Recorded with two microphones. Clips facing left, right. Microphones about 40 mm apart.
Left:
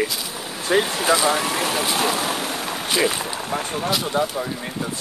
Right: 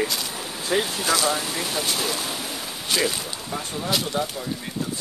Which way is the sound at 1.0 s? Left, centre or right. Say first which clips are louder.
Left 4 dB; left.